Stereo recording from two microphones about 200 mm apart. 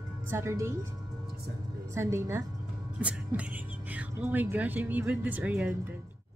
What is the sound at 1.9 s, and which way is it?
Speech, 15° right (ahead or behind).